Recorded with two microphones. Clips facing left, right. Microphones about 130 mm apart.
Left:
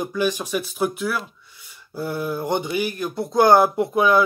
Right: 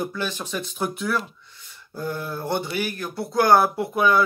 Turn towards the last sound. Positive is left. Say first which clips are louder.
# left 3 dB
turn(degrees=15)  # may be behind; listen again after turning